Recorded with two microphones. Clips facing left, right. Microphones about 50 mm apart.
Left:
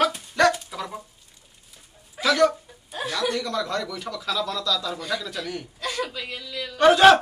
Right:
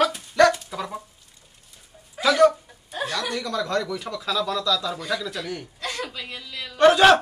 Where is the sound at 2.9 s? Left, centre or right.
Centre.